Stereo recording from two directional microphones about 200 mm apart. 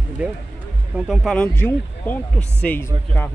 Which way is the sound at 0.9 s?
5° right (ahead or behind).